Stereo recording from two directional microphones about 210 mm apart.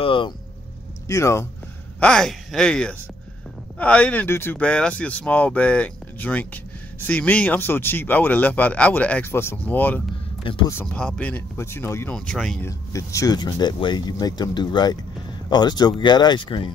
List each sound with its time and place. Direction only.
0.0 s vehicle: 25° left (ahead or behind)
1.0 s speech: 15° left (ahead or behind)
2.0 s speech: 5° left (ahead or behind)
12.6 s speech: 15° left (ahead or behind)